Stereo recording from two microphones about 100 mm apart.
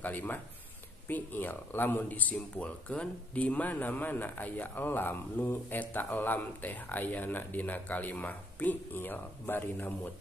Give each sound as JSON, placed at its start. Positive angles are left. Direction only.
{"t": 0.0, "sound": "speech", "side_deg": 15}